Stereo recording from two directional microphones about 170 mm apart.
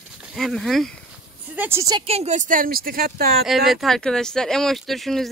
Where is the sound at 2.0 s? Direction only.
40° right (ahead or behind); by 3.2 s 60° right (ahead or behind).